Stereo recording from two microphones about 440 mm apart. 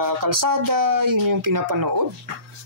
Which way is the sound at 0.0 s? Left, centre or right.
Right.